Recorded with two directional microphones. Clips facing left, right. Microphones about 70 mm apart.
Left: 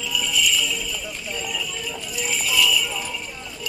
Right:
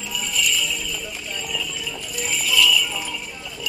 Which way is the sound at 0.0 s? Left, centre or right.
Right.